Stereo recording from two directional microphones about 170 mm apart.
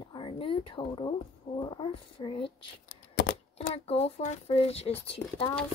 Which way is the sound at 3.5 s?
35° left (ahead or behind).